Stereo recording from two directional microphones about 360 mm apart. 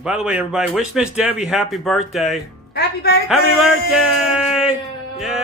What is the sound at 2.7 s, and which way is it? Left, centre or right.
Speech, left.